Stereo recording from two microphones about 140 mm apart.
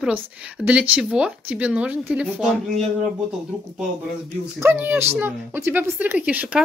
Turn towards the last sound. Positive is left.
turn(degrees=-10)  # may be behind; listen again after turning